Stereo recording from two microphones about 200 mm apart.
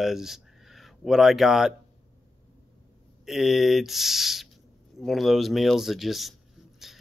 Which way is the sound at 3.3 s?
Centre (ahead or behind).